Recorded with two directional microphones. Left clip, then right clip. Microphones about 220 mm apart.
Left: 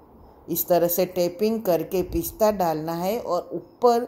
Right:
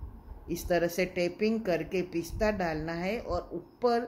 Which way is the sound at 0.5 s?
15° left (ahead or behind).